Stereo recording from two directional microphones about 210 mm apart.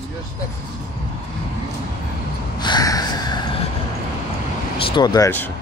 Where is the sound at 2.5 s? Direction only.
20° left (ahead or behind).